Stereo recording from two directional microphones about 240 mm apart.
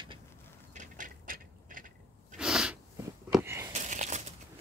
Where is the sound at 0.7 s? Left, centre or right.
Right.